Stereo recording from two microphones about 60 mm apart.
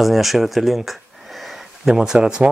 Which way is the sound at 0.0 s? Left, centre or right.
Centre.